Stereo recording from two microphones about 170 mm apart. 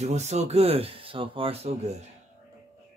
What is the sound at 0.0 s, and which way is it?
Speech, 40° right (ahead or behind).